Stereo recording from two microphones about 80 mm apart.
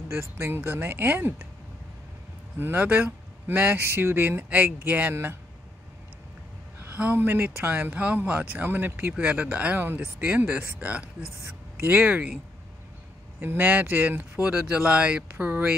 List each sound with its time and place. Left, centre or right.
0.2 s speech: right
2.6 s speech: right
5.1 s speech: right
7.0 s speech: right
13.4 s speech: right